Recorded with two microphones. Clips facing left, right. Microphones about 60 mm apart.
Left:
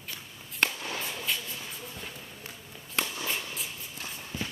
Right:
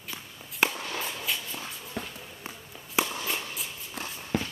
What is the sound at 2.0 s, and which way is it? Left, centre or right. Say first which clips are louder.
Walk: right 10 dB; right.